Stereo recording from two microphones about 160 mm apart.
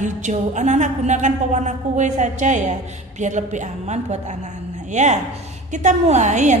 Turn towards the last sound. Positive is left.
turn(degrees=-45)  # may be behind; listen again after turning